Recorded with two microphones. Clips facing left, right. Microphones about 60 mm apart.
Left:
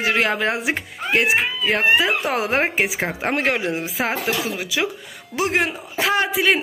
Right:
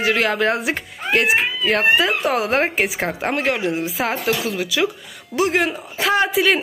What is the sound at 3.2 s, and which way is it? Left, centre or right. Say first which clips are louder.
Speech: even; left.